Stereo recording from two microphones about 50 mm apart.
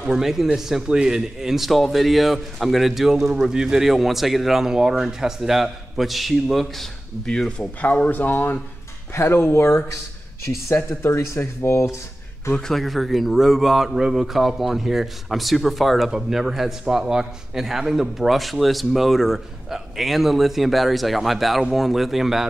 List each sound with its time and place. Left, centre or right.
0.1 s a man's voice: centre
7.2 s speech: centre; by 8.5 s left
9.1 s speech: left
10.9 s speech: left
12.5 s a man's voice: centre
12.8 s a man's voice: centre